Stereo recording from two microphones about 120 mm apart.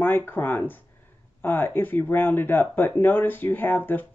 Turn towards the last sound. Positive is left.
turn(degrees=15)  # may be behind; listen again after turning